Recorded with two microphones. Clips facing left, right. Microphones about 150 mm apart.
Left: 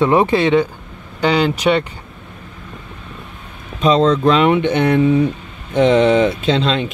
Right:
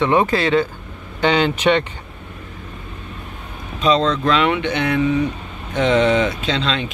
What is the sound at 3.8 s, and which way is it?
Speech, 45° left (ahead or behind).